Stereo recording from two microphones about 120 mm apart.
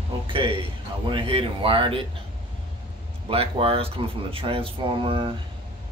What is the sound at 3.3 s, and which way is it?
Speech, 55° right (ahead or behind).